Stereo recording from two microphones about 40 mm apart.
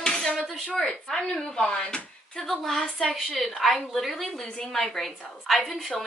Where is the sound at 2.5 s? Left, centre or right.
Centre.